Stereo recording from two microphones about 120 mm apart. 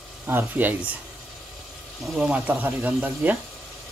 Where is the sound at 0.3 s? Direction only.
15° right (ahead or behind).